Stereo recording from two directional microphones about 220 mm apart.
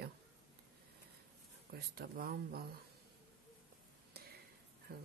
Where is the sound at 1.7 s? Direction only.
40° right (ahead or behind).